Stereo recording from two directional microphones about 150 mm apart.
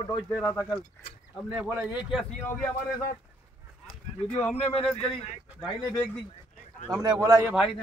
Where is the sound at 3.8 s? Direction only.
10° left (ahead or behind).